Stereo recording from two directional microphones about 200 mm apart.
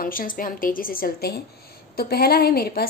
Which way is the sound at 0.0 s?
45° left (ahead or behind).